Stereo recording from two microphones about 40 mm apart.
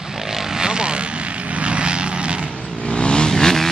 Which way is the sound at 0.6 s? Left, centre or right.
Right.